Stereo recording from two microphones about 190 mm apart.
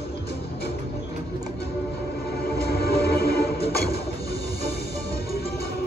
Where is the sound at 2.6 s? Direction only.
55° left (ahead or behind).